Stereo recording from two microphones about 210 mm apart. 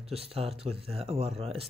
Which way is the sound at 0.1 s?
25° right (ahead or behind).